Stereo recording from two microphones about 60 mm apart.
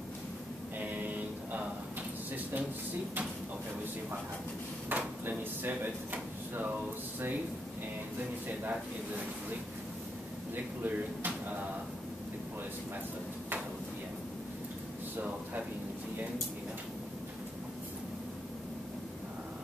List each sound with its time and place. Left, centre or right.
0.7 s music: right
4.8 s speech: right
10.5 s speech: right